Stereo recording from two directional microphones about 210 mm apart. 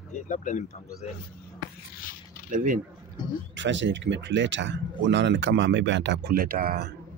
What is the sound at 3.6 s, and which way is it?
Speech, 60° right (ahead or behind).